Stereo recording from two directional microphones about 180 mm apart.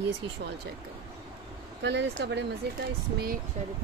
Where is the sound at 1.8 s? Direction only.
70° right (ahead or behind).